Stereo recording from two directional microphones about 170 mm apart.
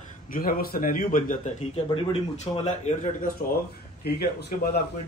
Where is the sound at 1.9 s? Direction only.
35° left (ahead or behind).